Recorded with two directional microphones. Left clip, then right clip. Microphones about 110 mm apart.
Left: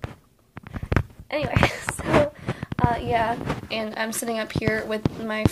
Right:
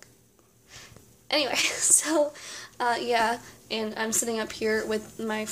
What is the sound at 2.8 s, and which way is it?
A woman's voice, 25° right (ahead or behind).